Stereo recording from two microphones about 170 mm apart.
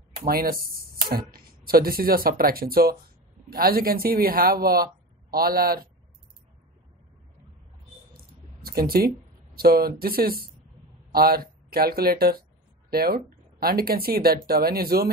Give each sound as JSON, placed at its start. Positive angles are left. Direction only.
{"t": 0.3, "sound": "speech", "side_deg": -60}
{"t": 8.2, "sound": "a sound", "side_deg": -60}
{"t": 9.6, "sound": "speech", "side_deg": -65}